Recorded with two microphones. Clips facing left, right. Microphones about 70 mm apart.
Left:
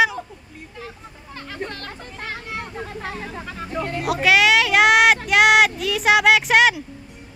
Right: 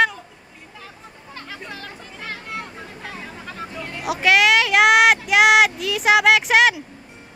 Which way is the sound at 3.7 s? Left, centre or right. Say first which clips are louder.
Left 7 dB; left.